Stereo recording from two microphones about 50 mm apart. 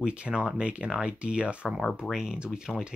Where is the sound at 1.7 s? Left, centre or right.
Centre.